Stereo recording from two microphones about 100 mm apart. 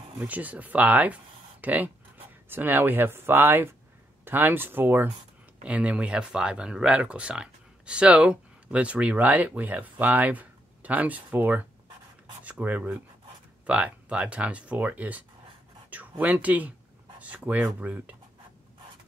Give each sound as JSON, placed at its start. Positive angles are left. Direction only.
{"t": 0.2, "sound": "speech", "side_deg": -15}